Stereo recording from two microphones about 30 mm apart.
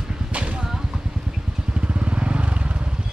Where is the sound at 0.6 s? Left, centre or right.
Centre.